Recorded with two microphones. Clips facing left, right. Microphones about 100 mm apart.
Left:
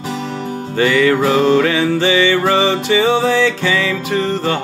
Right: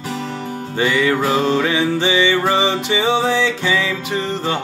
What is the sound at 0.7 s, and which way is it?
Music, 15° right (ahead or behind).